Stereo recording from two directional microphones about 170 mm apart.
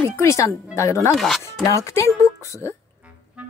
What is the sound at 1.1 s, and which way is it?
Speech, centre (ahead or behind).